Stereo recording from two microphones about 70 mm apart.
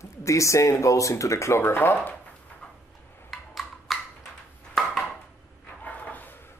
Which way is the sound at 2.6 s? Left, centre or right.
Centre.